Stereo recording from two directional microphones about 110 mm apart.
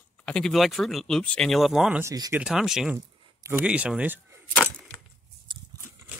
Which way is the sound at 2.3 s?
5° right (ahead or behind).